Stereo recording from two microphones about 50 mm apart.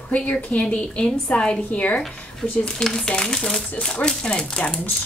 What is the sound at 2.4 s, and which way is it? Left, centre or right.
Speech, centre.